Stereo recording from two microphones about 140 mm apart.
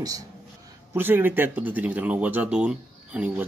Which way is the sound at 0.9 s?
15° right (ahead or behind).